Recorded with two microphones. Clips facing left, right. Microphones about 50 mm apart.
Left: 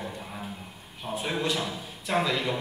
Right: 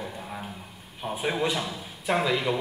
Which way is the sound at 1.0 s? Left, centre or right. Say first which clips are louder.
Right 3 dB; centre.